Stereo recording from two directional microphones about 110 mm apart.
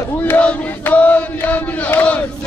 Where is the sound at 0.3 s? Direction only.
15° left (ahead or behind).